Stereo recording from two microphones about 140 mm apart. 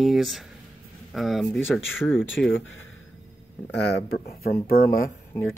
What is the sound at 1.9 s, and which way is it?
Speech, 15° left (ahead or behind).